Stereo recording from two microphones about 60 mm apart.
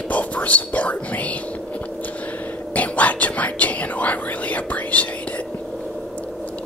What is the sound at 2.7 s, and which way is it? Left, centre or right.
Whispering, left.